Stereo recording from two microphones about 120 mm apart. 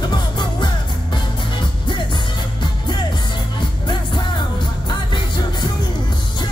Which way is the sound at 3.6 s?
40° left (ahead or behind).